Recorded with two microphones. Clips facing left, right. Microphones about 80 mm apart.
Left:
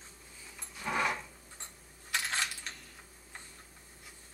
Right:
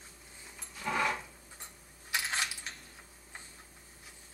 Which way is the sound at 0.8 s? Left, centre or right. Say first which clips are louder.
Even; centre.